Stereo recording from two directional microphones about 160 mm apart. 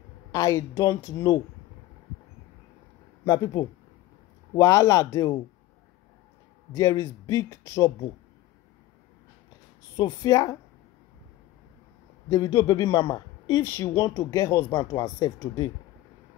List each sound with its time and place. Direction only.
0.3 s speech: 20° left (ahead or behind)
4.6 s speech: 20° left (ahead or behind)
6.7 s speech: 20° left (ahead or behind)
9.9 s speech: 25° left (ahead or behind)
12.3 s speech: 20° left (ahead or behind)